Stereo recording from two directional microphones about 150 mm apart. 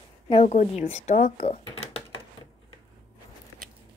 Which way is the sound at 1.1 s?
60° left (ahead or behind).